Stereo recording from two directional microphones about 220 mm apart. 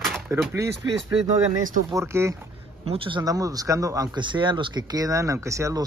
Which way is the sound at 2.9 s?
25° right (ahead or behind).